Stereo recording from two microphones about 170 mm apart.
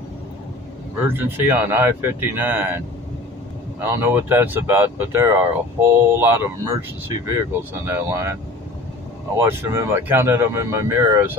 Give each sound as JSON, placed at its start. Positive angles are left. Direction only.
{"t": 1.0, "sound": "speech", "side_deg": -10}
{"t": 3.8, "sound": "speech", "side_deg": -15}
{"t": 7.8, "sound": "speech", "side_deg": -15}
{"t": 9.4, "sound": "speech", "side_deg": -15}